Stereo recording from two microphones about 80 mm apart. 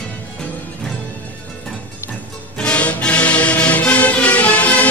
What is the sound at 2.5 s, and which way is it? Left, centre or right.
Music, centre.